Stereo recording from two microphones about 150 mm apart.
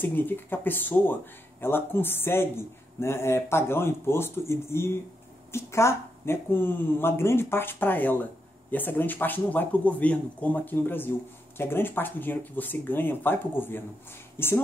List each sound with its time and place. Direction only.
0.0 s speech: 10° left (ahead or behind)